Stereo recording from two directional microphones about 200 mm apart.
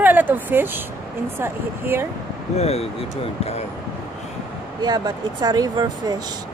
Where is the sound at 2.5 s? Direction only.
30° left (ahead or behind).